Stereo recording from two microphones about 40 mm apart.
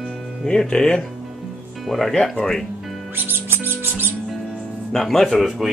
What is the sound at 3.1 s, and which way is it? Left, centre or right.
Music, right.